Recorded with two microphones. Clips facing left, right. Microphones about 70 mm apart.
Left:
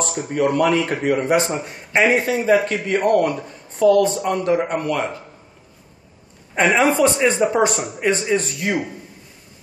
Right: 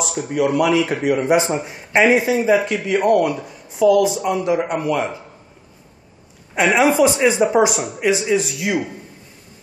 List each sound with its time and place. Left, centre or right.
0.1 s speech: centre
1.1 s speech: centre
6.5 s speech: centre